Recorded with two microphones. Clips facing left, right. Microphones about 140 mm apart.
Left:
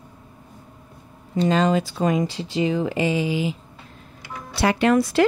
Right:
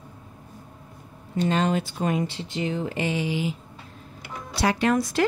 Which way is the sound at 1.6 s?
90° left.